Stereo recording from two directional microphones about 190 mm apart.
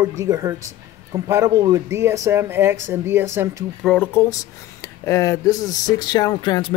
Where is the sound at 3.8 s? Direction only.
5° left (ahead or behind).